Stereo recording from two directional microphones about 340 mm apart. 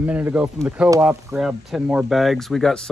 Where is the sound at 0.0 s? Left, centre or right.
Centre.